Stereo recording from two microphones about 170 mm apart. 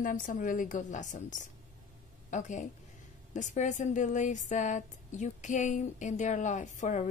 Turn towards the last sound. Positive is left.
turn(degrees=45)  # may be behind; listen again after turning